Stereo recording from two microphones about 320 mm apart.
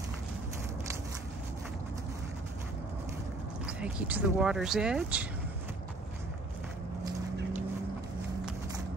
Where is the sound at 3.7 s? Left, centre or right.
Centre.